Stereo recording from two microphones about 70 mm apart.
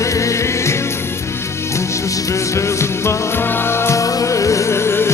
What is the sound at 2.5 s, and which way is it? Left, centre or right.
Music, left.